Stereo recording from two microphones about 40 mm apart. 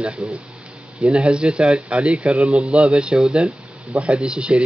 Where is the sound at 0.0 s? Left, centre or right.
Right.